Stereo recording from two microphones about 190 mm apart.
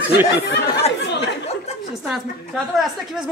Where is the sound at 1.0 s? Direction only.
65° left (ahead or behind).